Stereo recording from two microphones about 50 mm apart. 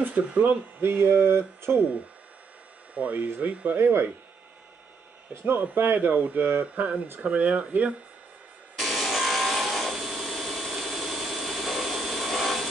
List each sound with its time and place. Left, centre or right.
0.0 s speech: right
0.7 s speech: right
2.9 s speech: right
3.7 s speech: right
5.3 s speech: right
5.6 s speech: right
8.7 s wood: centre